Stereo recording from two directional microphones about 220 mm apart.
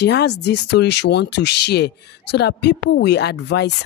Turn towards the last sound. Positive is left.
turn(degrees=50)  # may be behind; listen again after turning